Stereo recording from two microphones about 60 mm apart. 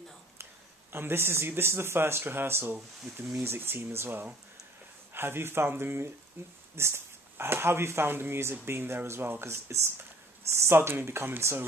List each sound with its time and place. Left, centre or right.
0.9 s speech: right